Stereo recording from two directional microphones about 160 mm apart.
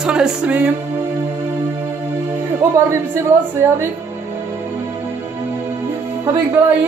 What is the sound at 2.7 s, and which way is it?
A woman's voice, 15° right (ahead or behind).